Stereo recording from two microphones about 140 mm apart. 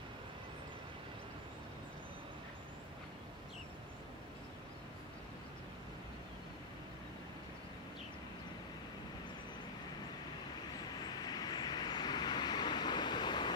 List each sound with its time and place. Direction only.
11.0 s vehicle: 30° left (ahead or behind)